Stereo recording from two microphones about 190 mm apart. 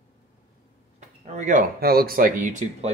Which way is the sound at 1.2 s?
40° right (ahead or behind).